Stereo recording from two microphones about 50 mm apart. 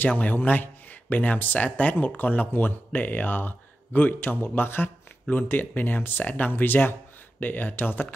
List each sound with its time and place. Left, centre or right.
0.0 s speech: left